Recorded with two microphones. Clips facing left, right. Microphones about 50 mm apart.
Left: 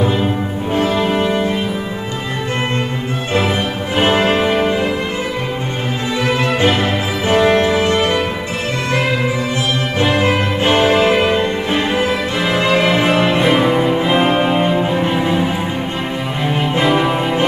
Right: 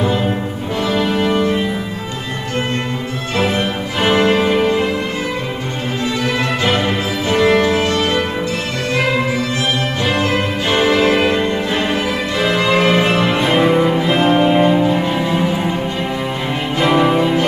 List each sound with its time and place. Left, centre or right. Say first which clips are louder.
4.0 s music: right 1 dB; left
7.2 s music: left 1 dB; left
10.1 s music: left 2 dB; left
11.1 s music: left 1 dB; centre
12.4 s music: even; centre
13.5 s music: even; centre
14.0 s music: right 1 dB; centre
16.8 s music: right 3 dB; centre